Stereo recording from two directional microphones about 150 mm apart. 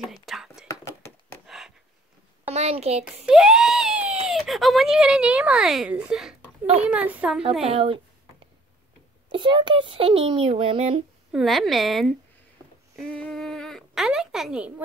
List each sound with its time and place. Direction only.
0.1 s whispering: centre (ahead or behind)
0.7 s a sound: 15° left (ahead or behind)
2.5 s a woman's voice: 45° right (ahead or behind)
3.3 s a sound: 5° right (ahead or behind)
4.3 s a woman's voice: centre (ahead or behind)
7.6 s a child's voice: 40° right (ahead or behind)
9.3 s a child's voice: 35° right (ahead or behind)
11.3 s speech: centre (ahead or behind)
12.9 s a sound: 5° left (ahead or behind)